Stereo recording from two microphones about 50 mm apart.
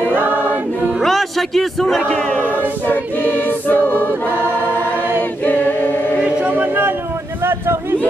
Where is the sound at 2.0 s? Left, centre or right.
Left.